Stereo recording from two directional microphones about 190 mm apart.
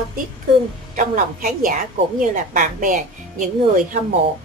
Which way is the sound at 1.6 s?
45° right (ahead or behind).